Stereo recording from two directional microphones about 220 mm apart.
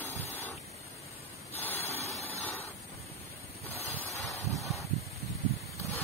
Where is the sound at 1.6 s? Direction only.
10° left (ahead or behind).